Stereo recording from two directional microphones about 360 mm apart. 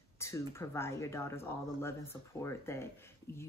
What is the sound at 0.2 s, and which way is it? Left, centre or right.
Speech, centre.